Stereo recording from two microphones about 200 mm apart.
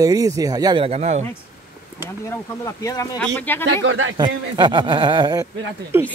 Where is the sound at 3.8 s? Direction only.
80° right.